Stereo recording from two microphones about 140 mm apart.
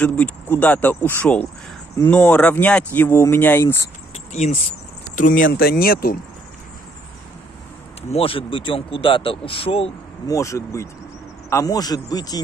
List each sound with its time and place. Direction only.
0.0 s speech: 10° left (ahead or behind)
4.1 s a sound: 55° left (ahead or behind)
5.1 s speech: 70° left (ahead or behind); by 6.1 s 90° left
8.1 s speech: 40° left (ahead or behind)
10.2 s speech: 20° left (ahead or behind)